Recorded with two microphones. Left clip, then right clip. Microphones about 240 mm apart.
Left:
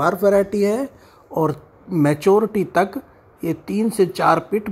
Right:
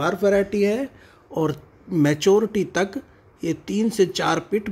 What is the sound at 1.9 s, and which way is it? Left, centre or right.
Speech, centre.